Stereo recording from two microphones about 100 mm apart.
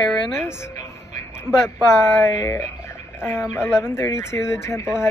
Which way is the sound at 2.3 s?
30° left (ahead or behind).